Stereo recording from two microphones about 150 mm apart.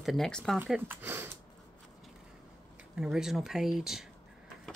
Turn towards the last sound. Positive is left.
turn(degrees=0)  # may be behind; listen again after turning